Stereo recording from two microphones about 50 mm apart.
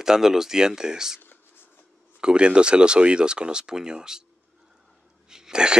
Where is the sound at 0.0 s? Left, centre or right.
Centre.